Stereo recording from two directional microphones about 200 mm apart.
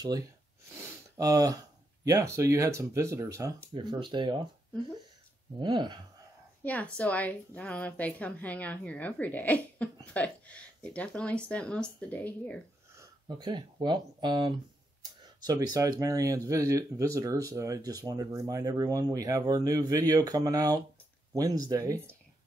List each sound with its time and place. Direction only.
0.7 s a sound: 15° right (ahead or behind)
2.0 s speech: 15° right (ahead or behind)
5.6 s speech: 25° right (ahead or behind)
6.6 s a woman's voice: 5° left (ahead or behind)
12.9 s speech: 20° right (ahead or behind)